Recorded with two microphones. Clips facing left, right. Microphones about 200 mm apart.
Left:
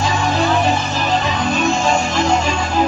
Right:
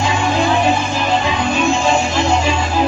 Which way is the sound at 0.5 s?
10° right (ahead or behind).